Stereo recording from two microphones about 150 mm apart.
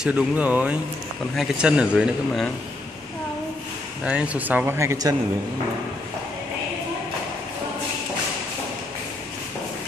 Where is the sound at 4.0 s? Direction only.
10° right (ahead or behind).